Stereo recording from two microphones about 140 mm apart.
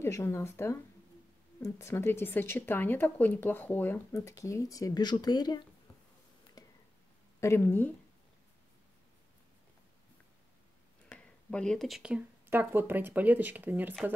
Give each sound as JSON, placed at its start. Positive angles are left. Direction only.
{"t": 0.0, "sound": "speech", "side_deg": 20}
{"t": 6.6, "sound": "a sound", "side_deg": 25}
{"t": 7.3, "sound": "speech", "side_deg": 20}
{"t": 11.1, "sound": "speech", "side_deg": 5}